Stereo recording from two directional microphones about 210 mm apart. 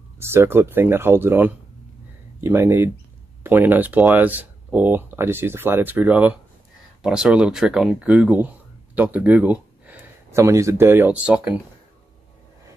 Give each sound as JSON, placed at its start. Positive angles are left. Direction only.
{"t": 0.2, "sound": "speech", "side_deg": -10}